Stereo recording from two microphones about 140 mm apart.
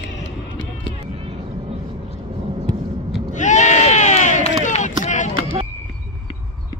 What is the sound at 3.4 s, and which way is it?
Sheep, 60° left (ahead or behind).